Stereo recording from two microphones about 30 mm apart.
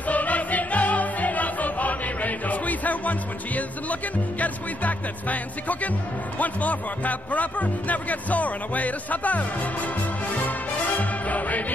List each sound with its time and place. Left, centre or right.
0.1 s music: left
6.3 s speech: left
11.0 s music: left